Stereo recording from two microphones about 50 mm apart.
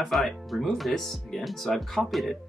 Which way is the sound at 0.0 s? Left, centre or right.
Centre.